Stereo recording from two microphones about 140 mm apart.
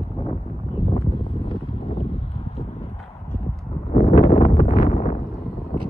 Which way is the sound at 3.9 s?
60° left (ahead or behind).